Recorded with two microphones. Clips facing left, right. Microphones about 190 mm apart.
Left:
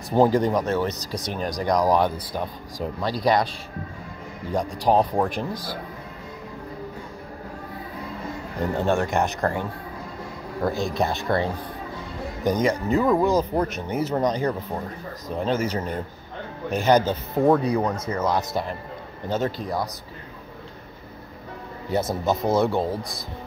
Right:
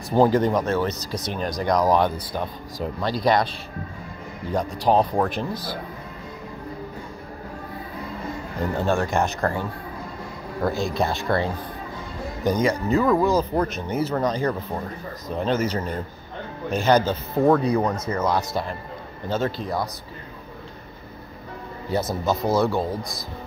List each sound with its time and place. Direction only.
0.1 s speech: 15° left (ahead or behind)
4.7 s speech: 15° left (ahead or behind)
8.7 s speech: 20° left (ahead or behind)
21.9 s speech: 20° left (ahead or behind)